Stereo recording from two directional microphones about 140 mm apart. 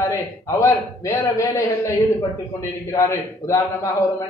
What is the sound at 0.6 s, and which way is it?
Speech, 20° left (ahead or behind).